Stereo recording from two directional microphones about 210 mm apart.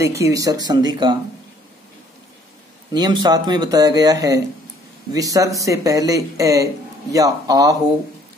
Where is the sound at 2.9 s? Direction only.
20° right (ahead or behind).